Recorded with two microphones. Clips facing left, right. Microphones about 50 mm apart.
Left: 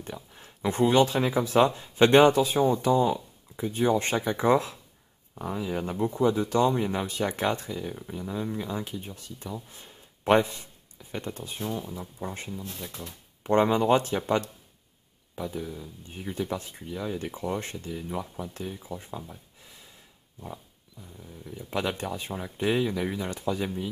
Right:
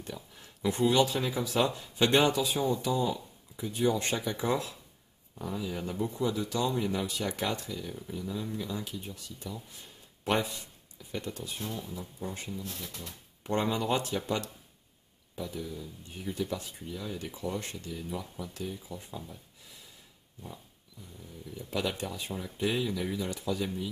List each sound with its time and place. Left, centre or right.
0.0 s speech: left
12.5 s speech: centre
13.4 s speech: left
21.6 s speech: left